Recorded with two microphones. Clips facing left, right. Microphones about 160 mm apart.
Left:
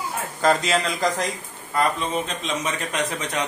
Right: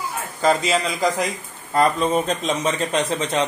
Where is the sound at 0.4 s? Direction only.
Centre (ahead or behind).